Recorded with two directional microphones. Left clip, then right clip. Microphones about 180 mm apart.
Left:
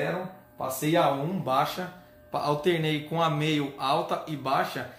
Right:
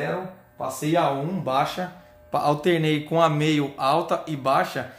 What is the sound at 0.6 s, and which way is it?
Speech, 15° right (ahead or behind).